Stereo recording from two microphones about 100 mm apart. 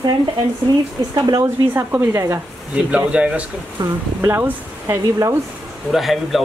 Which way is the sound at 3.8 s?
50° right (ahead or behind).